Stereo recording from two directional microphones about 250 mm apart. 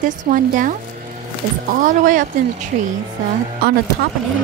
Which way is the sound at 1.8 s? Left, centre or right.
Right.